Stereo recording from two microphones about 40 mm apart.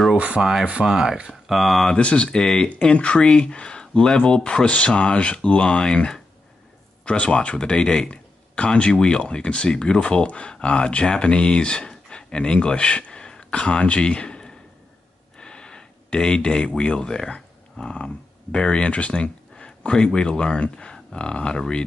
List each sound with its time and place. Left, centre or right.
0.4 s speech: centre
1.5 s speech: centre
2.0 s speech: left
2.3 s speech: centre
2.8 s speech: left
10.0 s speech: left
13.2 s a sound: left
15.3 s speech: left
19.5 s a sound: left
20.2 s speech: left